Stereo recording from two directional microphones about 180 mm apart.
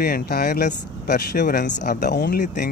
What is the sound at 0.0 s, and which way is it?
Speech, 60° left (ahead or behind).